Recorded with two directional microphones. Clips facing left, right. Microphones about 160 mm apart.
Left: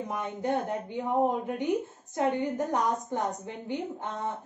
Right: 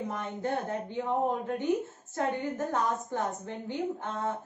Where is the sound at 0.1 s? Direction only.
15° left (ahead or behind).